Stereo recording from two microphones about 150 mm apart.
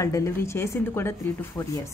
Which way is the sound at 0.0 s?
20° left (ahead or behind).